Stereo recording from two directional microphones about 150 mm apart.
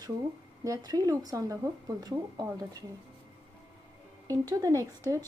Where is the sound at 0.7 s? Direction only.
25° right (ahead or behind).